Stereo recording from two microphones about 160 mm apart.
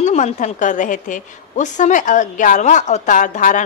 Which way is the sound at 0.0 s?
50° left (ahead or behind).